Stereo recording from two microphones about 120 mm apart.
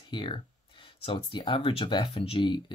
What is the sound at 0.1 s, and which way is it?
Speech, 45° left (ahead or behind).